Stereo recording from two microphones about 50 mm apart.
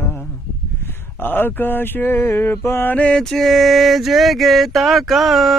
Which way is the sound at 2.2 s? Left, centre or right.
Left.